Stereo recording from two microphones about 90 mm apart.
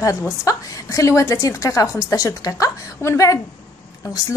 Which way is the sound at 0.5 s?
35° left (ahead or behind).